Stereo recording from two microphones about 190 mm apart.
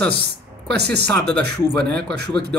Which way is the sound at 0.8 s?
60° right (ahead or behind).